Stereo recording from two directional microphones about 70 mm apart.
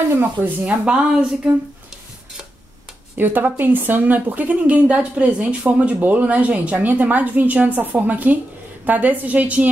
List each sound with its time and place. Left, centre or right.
0.7 s a woman's voice: centre
3.2 s a woman's voice: right